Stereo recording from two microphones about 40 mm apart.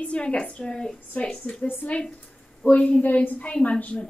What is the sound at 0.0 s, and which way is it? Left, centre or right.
A woman's voice, left.